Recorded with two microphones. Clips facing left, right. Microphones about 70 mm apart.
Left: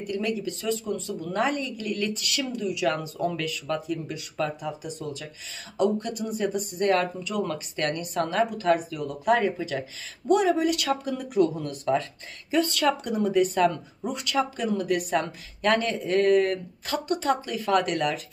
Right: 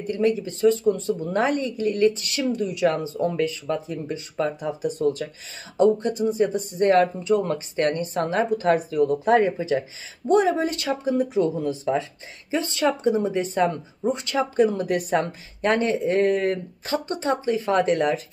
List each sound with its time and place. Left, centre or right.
0.0 s speech: right
5.8 s speech: right
12.4 s speech: right
15.6 s speech: right